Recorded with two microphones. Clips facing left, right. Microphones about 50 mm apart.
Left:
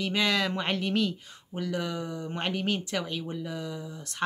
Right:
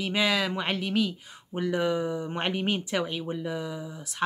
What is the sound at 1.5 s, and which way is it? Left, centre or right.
Speech, right.